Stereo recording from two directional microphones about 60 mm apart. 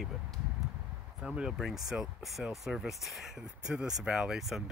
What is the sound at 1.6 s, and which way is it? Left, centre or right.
Speech, centre.